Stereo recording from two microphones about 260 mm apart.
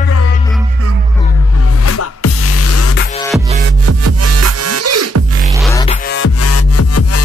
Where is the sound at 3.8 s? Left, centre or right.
Right.